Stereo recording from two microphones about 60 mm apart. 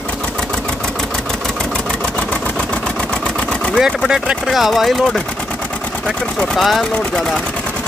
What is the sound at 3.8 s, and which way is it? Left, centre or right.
Speech, centre.